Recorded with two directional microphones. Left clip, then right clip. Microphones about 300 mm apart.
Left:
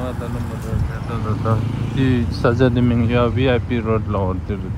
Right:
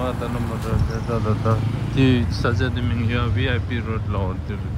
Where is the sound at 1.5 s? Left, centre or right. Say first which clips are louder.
Left 1 dB; centre.